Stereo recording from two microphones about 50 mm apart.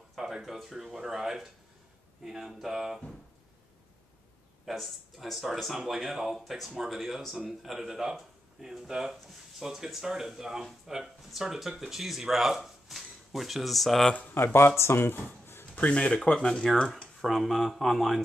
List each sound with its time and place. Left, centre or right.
0.1 s speech: centre
4.6 s speech: centre
14.3 s speech: left
15.7 s speech: left
16.3 s speech: centre
17.2 s speech: centre